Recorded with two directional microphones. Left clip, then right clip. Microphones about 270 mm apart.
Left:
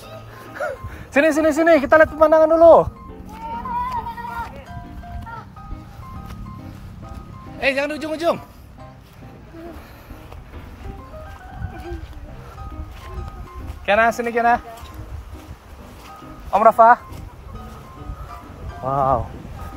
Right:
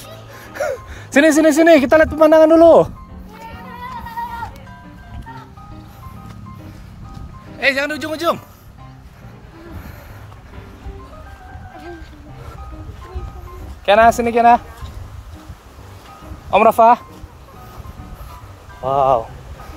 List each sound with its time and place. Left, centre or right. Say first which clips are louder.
0.6 s speech: right 5 dB; right
7.5 s a man's voice: right 3 dB; centre
13.8 s speech: right 6 dB; right
16.4 s speech: right 1 dB; right
18.9 s speech: right 4 dB; right